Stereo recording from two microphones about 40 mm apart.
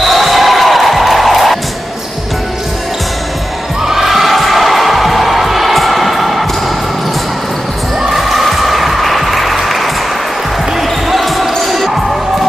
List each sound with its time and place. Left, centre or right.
0.0 s music: centre
3.8 s music: centre
8.1 s music: centre
10.8 s basketball bounce: centre